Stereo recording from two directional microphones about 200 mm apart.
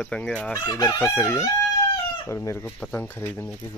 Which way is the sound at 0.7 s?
20° left (ahead or behind).